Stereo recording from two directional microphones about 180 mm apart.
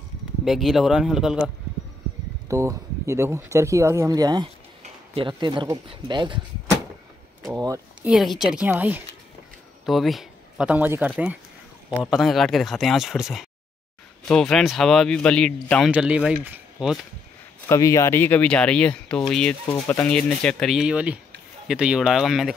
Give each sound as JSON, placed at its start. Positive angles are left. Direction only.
{"t": 0.5, "sound": "speech", "side_deg": 0}
{"t": 2.4, "sound": "speech", "side_deg": -15}
{"t": 7.5, "sound": "speech", "side_deg": -20}
{"t": 8.0, "sound": "a man's voice", "side_deg": 0}
{"t": 15.9, "sound": "speech", "side_deg": -5}
{"t": 17.6, "sound": "speech", "side_deg": 15}